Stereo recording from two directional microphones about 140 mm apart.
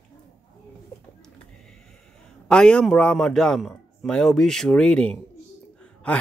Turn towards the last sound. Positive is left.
turn(degrees=5)  # may be behind; listen again after turning